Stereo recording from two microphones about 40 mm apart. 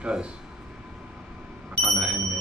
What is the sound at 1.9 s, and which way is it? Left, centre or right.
Speech, right.